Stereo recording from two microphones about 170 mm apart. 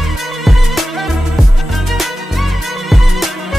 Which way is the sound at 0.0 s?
Centre (ahead or behind).